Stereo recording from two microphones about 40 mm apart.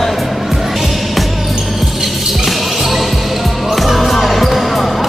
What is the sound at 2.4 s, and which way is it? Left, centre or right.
Music, centre.